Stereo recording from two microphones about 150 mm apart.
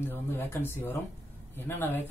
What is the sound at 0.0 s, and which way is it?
A man's voice, 15° left (ahead or behind).